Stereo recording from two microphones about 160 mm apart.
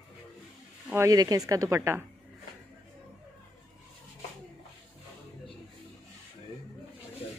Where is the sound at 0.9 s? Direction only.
20° right (ahead or behind).